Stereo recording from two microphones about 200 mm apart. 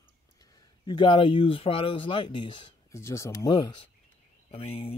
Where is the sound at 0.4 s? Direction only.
20° left (ahead or behind).